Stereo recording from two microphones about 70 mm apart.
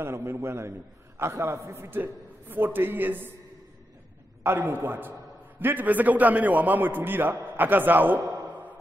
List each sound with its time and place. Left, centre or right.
0.0 s a man's voice: right
4.4 s a man's voice: right